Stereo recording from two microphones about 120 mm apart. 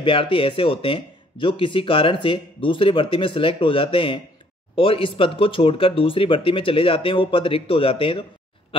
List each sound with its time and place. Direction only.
0.0 s speech: 45° left (ahead or behind)